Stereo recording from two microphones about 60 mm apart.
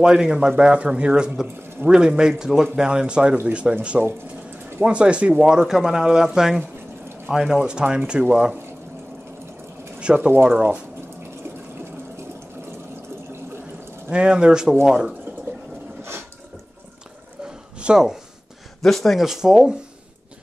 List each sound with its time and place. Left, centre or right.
0.0 s speech: centre
4.8 s speech: centre
9.9 s speech: centre
14.1 s speech: centre
17.7 s speech: centre
18.8 s speech: centre
19.2 s speech: centre